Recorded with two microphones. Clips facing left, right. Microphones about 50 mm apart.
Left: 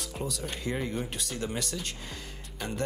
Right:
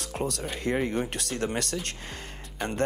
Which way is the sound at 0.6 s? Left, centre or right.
Right.